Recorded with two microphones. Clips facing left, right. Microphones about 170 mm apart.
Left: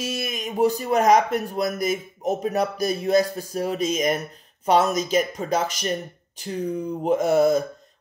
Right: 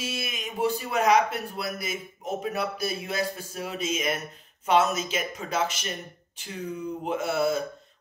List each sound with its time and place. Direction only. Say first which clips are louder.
0.0 s a man's voice: left 5 dB; 40° left (ahead or behind)